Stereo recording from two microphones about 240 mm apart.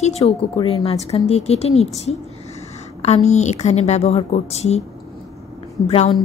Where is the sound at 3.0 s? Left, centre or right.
Left.